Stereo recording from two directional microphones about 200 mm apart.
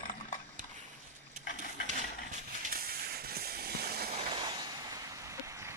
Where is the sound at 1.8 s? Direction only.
40° right (ahead or behind).